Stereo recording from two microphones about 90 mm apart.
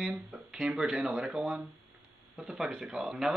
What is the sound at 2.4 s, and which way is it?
Speech, centre (ahead or behind).